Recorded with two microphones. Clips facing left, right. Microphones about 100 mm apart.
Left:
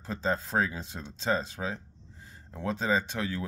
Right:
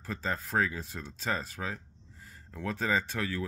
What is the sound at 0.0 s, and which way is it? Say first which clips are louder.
Speech: left 4 dB; 25° left (ahead or behind).